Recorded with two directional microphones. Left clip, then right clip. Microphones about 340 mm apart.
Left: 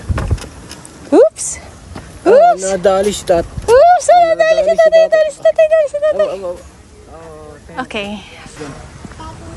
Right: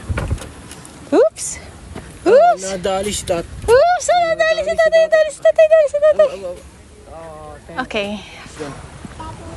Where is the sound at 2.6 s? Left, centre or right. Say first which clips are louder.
Left 8 dB; left.